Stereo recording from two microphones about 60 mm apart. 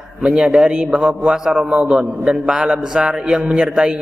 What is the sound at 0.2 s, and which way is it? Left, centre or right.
A man's voice, centre.